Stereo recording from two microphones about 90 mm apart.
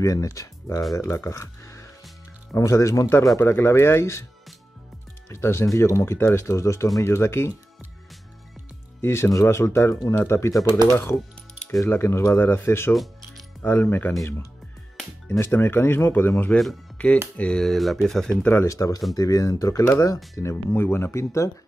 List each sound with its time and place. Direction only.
0.0 s speech: 40° left (ahead or behind)
5.3 s speech: 30° left (ahead or behind)
9.0 s speech: 30° left (ahead or behind)
11.8 s speech: 30° left (ahead or behind)
12.9 s music: centre (ahead or behind)
13.6 s speech: 20° left (ahead or behind)
15.4 s speech: 25° left (ahead or behind); by 18.3 s 5° left (ahead or behind)
18.4 s speech: 20° left (ahead or behind)
18.7 s speech: 35° left (ahead or behind)
20.5 s speech: 25° left (ahead or behind)